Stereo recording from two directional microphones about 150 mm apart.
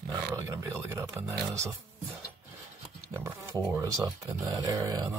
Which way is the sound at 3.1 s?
20° right (ahead or behind).